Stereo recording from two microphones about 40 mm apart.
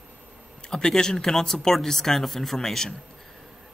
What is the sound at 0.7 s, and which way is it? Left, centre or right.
Speech, centre.